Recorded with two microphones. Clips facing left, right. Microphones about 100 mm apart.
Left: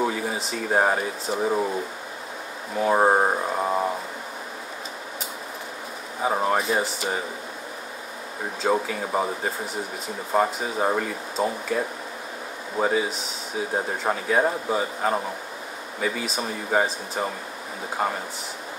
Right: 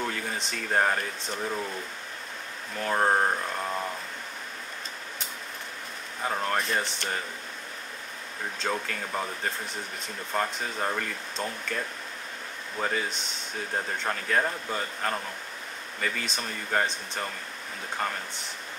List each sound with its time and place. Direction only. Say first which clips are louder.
0.0 s speech: left 6 dB; 10° left (ahead or behind)
2.7 s speech: left 6 dB; 15° left (ahead or behind)
6.2 s speech: left 6 dB; 10° left (ahead or behind)
8.8 s speech: left 7 dB; 10° left (ahead or behind)